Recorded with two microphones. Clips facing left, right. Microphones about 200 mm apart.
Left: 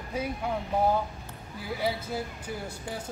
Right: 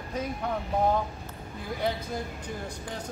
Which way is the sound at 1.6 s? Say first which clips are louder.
Even; 5° left (ahead or behind).